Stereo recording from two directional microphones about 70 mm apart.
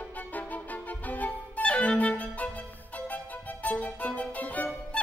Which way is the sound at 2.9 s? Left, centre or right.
Left.